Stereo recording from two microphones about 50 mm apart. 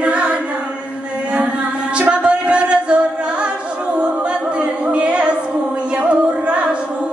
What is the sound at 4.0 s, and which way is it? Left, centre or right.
Music, right.